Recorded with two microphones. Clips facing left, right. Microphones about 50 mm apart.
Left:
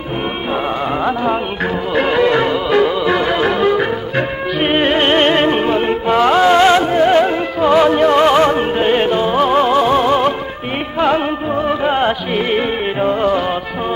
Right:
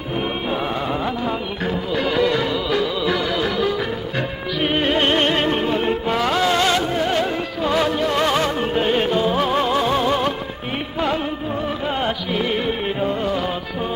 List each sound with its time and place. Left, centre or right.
1.0 s music: left
11.0 s music: left